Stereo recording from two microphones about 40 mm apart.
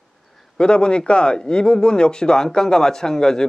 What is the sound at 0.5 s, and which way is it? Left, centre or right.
Speech, left.